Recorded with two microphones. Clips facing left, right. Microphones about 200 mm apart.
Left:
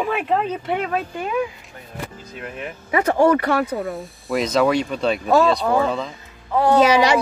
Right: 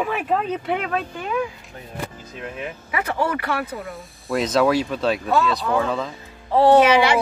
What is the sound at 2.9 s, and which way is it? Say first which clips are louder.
Speech: left 8 dB; 35° left (ahead or behind).